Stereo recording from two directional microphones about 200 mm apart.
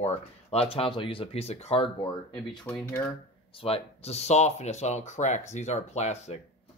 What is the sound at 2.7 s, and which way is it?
Speech, 5° left (ahead or behind).